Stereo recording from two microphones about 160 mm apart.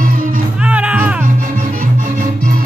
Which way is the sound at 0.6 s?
5° right (ahead or behind).